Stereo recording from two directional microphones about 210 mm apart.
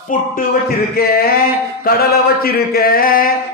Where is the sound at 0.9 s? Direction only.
45° left (ahead or behind).